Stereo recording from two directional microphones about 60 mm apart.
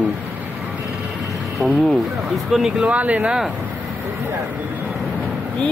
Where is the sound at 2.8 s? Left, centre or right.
Right.